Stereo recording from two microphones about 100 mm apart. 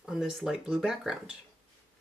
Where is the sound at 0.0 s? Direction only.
5° right (ahead or behind).